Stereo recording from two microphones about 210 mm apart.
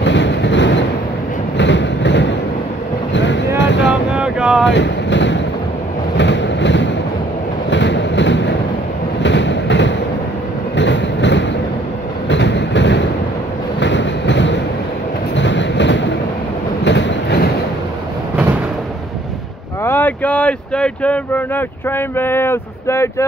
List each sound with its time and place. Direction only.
0.0 s vehicle: 55° left (ahead or behind)
3.5 s a sound: 60° left (ahead or behind)
4.1 s boat: 5° right (ahead or behind)
4.6 s speech: 55° left (ahead or behind)
6.1 s vehicle: 60° left (ahead or behind)
7.7 s a sound: 60° left (ahead or behind)
9.2 s train: 60° left (ahead or behind)
10.8 s vehicle: 60° left (ahead or behind)
12.3 s train: 55° left (ahead or behind)
19.8 s speech: 10° left (ahead or behind)